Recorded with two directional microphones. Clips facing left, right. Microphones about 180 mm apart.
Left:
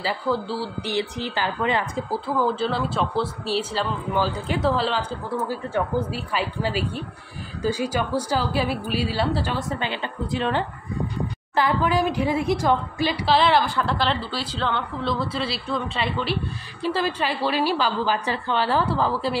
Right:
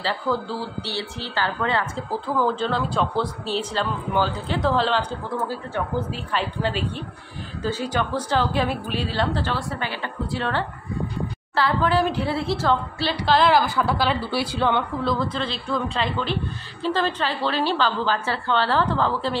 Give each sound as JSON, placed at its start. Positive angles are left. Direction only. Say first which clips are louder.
{"t": 0.0, "sound": "a woman's voice", "louder": "even", "side_deg": 10}
{"t": 2.4, "sound": "a woman's voice", "louder": "right 1 dB", "side_deg": 5}
{"t": 6.1, "sound": "a woman's voice", "louder": "even", "side_deg": 5}
{"t": 15.0, "sound": "a woman's voice", "louder": "right 1 dB", "side_deg": 5}